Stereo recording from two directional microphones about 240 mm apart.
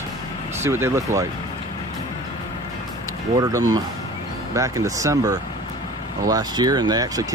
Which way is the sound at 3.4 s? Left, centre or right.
Centre.